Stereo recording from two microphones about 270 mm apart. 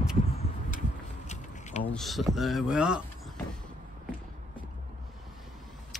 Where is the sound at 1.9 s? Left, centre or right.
Centre.